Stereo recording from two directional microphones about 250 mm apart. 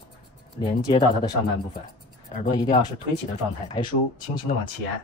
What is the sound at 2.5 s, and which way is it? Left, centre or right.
Speech, centre.